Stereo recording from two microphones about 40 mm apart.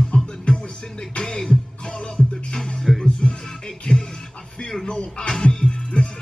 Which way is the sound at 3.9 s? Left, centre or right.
Left.